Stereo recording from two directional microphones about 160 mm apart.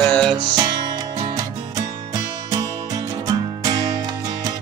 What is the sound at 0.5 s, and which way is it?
Music, 25° right (ahead or behind).